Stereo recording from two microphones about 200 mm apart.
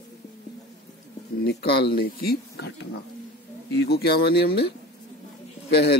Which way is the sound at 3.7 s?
55° left (ahead or behind).